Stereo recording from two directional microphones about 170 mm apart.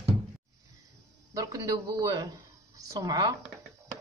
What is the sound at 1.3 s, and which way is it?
Speech, 20° right (ahead or behind).